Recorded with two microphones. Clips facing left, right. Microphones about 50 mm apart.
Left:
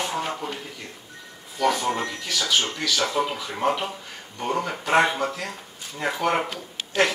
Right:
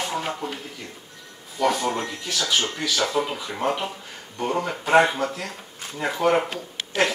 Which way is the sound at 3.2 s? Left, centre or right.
Centre.